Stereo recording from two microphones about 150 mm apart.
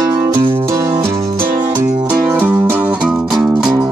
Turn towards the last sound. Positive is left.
turn(degrees=-5)  # may be behind; listen again after turning